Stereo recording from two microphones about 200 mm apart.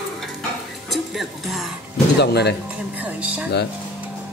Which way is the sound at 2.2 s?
55° left (ahead or behind).